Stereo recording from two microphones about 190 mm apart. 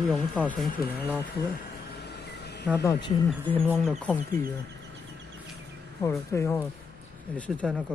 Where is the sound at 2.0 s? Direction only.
60° left (ahead or behind).